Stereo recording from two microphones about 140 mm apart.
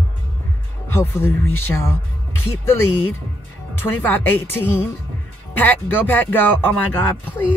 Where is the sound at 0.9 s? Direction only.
15° left (ahead or behind).